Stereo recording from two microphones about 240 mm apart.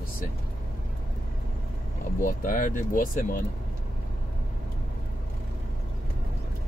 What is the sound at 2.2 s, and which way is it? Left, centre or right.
Speech, left.